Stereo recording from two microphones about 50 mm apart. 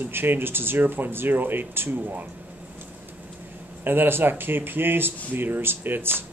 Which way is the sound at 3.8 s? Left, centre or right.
Right.